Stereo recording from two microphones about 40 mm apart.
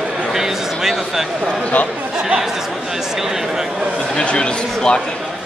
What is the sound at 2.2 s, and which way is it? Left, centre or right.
Chatter, centre.